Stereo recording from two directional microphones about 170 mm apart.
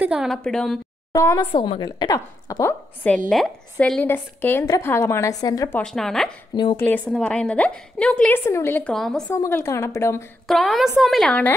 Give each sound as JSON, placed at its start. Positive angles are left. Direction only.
{"t": 0.0, "sound": "a woman's voice", "side_deg": -5}
{"t": 1.1, "sound": "a woman's voice", "side_deg": 20}
{"t": 5.8, "sound": "a woman's voice", "side_deg": 5}
{"t": 6.5, "sound": "speech", "side_deg": 25}
{"t": 6.8, "sound": "a woman's voice", "side_deg": 10}
{"t": 9.3, "sound": "a woman's voice", "side_deg": 15}
{"t": 10.5, "sound": "a woman's voice", "side_deg": 0}